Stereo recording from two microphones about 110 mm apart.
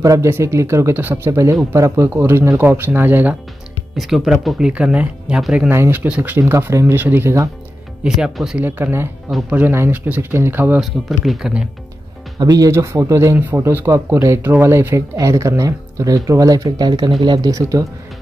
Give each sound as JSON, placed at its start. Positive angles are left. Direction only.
{"t": 0.0, "sound": "speech", "side_deg": -30}
{"t": 3.9, "sound": "speech", "side_deg": 0}
{"t": 5.7, "sound": "speech", "side_deg": -20}
{"t": 6.4, "sound": "speech", "side_deg": -25}
{"t": 8.0, "sound": "speech", "side_deg": -5}
{"t": 8.6, "sound": "speech", "side_deg": -20}
{"t": 10.8, "sound": "speech", "side_deg": 0}
{"t": 12.4, "sound": "speech", "side_deg": -35}
{"t": 12.7, "sound": "speech", "side_deg": -25}
{"t": 17.5, "sound": "speech", "side_deg": -30}